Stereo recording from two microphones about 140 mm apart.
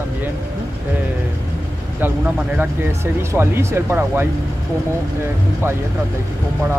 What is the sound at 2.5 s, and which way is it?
Speech, 15° right (ahead or behind).